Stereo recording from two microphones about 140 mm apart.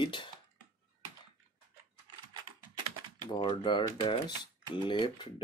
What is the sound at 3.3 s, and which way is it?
Speech, 35° left (ahead or behind).